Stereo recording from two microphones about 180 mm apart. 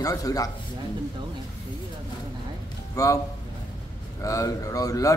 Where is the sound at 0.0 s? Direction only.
20° left (ahead or behind).